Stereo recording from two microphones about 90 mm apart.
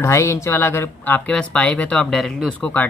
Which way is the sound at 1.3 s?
10° left (ahead or behind).